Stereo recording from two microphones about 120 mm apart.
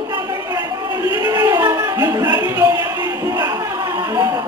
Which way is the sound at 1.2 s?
30° right (ahead or behind).